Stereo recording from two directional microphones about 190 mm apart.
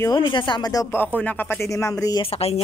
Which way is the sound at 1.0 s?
10° left (ahead or behind).